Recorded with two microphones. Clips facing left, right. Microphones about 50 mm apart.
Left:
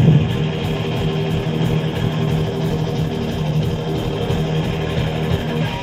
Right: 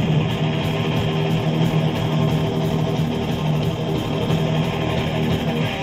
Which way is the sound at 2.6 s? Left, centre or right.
Right.